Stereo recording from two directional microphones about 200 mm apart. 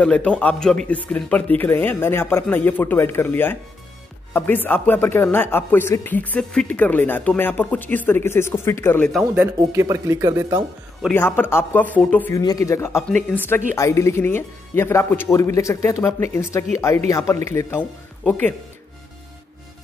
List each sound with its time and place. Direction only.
0.0 s speech: 5° left (ahead or behind)
9.1 s speech: 5° right (ahead or behind)
11.0 s speech: 10° left (ahead or behind)